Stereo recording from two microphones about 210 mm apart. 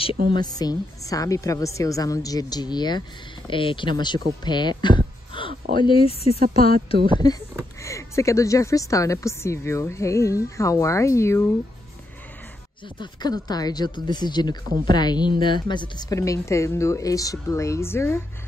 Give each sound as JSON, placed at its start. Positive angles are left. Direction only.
{"t": 0.3, "sound": "speech", "side_deg": 20}
{"t": 4.5, "sound": "a sound", "side_deg": 20}
{"t": 5.8, "sound": "speech", "side_deg": 25}
{"t": 13.0, "sound": "speech", "side_deg": 20}